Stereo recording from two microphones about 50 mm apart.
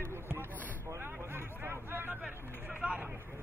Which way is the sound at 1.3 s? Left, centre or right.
Right.